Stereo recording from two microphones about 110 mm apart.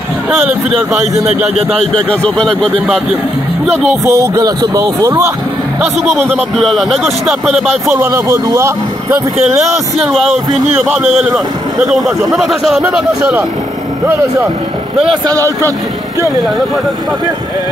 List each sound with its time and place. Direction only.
0.3 s speech: 10° right (ahead or behind)
2.0 s speech: 10° left (ahead or behind)
4.0 s speech: 25° right (ahead or behind)
5.9 s a man's voice: centre (ahead or behind)
7.9 s speech: 20° right (ahead or behind)
9.9 s a man's voice: centre (ahead or behind)
12.8 s speech: 15° right (ahead or behind)
15.2 s speech: 30° right (ahead or behind)